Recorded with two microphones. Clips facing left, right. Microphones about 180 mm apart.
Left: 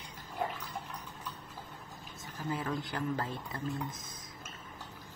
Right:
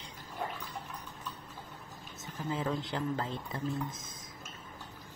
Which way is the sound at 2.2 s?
20° right (ahead or behind).